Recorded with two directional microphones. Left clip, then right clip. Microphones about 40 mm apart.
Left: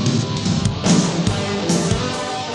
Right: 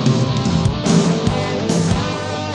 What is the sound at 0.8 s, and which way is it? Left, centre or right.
Music, right.